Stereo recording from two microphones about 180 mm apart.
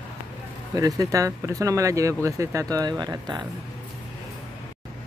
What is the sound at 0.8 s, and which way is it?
Speech, 20° right (ahead or behind).